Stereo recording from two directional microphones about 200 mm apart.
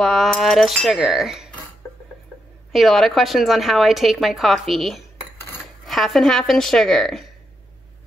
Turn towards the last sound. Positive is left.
turn(degrees=0)  # may be behind; listen again after turning